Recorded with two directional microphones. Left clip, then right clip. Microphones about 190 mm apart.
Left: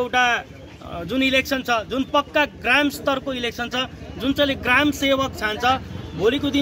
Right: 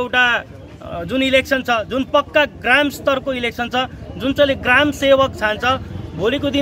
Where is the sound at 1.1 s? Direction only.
30° right (ahead or behind).